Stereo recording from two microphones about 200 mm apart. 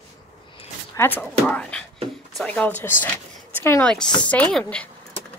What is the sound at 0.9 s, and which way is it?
Speech, 10° left (ahead or behind).